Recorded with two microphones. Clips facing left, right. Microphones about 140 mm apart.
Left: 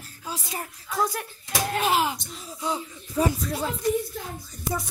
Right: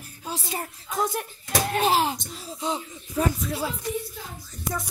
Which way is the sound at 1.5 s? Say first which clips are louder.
Right 2 dB; 35° right (ahead or behind).